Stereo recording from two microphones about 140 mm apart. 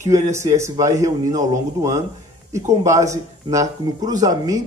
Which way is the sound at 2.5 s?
20° right (ahead or behind).